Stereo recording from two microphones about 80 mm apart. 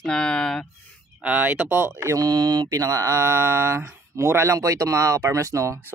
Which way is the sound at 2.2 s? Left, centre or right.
Right.